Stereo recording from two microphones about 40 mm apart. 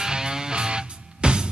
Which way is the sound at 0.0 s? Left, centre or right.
Centre.